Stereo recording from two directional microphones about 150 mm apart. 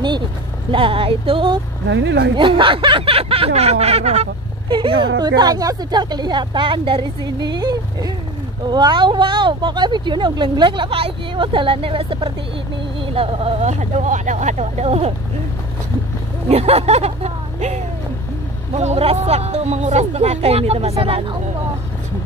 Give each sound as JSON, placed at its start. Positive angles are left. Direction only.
{"t": 0.7, "sound": "speech", "side_deg": -35}
{"t": 5.0, "sound": "speech", "side_deg": -25}
{"t": 16.4, "sound": "speech", "side_deg": -45}